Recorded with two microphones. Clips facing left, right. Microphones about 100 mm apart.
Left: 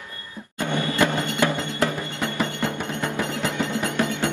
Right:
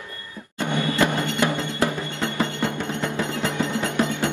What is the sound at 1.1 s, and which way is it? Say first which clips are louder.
Music: right 1 dB; 15° left (ahead or behind).